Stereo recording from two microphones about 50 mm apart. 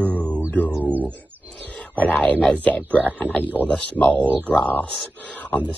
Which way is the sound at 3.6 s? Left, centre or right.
Right.